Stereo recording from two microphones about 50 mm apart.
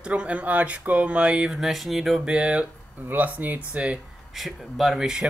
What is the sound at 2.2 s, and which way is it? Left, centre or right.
Speech, right.